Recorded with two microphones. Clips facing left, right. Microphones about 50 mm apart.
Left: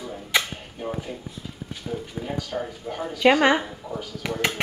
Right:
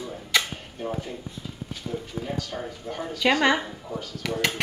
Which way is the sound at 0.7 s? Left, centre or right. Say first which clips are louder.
Even; centre.